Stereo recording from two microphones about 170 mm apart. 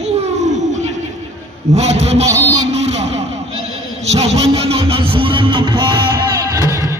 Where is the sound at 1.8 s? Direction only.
40° right (ahead or behind).